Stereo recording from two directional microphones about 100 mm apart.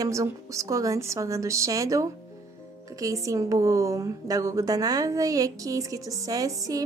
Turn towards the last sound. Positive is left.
turn(degrees=-35)  # may be behind; listen again after turning